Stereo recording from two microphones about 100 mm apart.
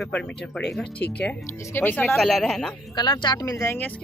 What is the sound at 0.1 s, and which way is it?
Speech, 5° left (ahead or behind).